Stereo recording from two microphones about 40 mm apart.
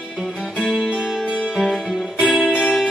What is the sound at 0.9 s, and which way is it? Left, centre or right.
Music, centre.